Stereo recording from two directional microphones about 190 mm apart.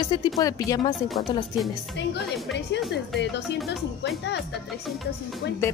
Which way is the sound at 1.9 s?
65° left (ahead or behind).